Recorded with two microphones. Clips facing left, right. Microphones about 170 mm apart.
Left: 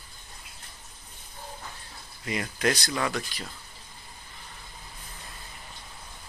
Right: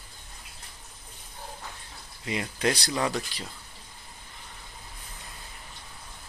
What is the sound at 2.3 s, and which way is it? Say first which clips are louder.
Speech: even; 20° right (ahead or behind).